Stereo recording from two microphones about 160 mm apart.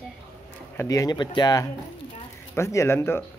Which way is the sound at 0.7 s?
15° left (ahead or behind).